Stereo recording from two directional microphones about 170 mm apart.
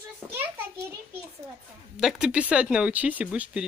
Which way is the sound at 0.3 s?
10° right (ahead or behind).